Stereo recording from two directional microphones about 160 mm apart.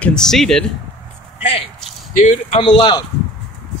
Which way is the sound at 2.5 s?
30° left (ahead or behind).